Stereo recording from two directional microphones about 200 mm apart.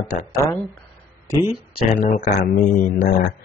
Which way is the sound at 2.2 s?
45° left (ahead or behind).